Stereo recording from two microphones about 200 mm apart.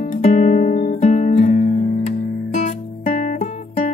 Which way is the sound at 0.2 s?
35° left (ahead or behind).